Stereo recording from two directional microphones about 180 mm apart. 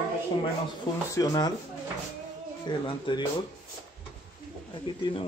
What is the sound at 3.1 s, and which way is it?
Speech, 30° left (ahead or behind).